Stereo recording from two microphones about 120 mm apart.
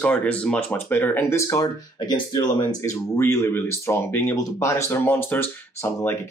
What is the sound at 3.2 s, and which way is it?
Speech, 20° left (ahead or behind).